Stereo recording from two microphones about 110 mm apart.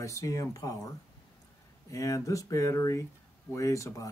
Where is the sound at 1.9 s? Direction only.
30° left (ahead or behind).